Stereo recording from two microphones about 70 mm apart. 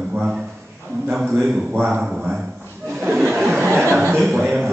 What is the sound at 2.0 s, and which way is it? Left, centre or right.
Speech, centre.